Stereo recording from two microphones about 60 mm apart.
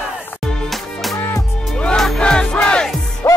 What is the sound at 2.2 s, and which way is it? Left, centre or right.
Battle cry, centre.